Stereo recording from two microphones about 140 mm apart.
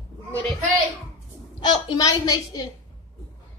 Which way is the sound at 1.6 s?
30° left (ahead or behind).